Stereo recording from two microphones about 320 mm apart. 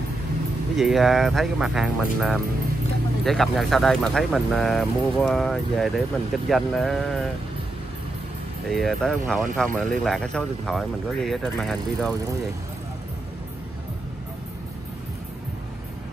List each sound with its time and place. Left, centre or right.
0.7 s speech: centre
8.6 s speech: centre